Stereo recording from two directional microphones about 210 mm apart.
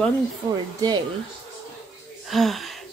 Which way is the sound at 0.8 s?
20° right (ahead or behind).